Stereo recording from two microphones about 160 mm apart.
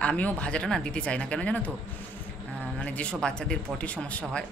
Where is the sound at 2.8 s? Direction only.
5° left (ahead or behind).